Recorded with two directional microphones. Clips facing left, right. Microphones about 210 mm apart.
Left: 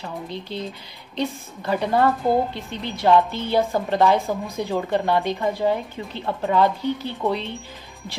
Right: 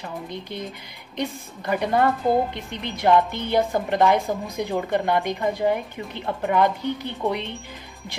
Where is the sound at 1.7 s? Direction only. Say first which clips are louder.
Left 1 dB; 15° right (ahead or behind).